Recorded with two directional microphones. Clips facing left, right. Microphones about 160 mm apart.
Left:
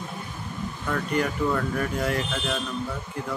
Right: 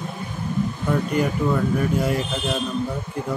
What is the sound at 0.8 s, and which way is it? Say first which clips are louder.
Speech: right 3 dB; 15° right (ahead or behind).